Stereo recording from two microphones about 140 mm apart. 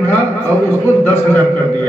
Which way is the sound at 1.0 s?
15° left (ahead or behind).